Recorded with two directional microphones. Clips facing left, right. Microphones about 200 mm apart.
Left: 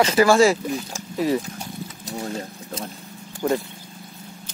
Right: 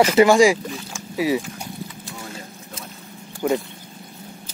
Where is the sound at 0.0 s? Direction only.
25° right (ahead or behind).